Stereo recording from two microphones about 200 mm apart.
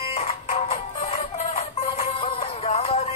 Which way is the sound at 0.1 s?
35° left (ahead or behind).